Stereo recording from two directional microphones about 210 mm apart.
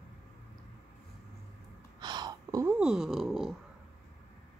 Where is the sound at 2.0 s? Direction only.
20° right (ahead or behind).